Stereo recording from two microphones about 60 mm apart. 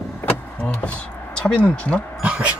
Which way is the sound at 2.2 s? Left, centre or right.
Centre.